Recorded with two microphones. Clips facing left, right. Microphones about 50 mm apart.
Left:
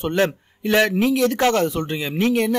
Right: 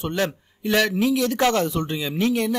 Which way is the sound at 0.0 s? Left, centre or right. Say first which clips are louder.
Left 4 dB; left.